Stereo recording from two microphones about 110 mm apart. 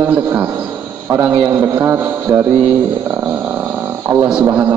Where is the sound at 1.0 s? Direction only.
20° right (ahead or behind).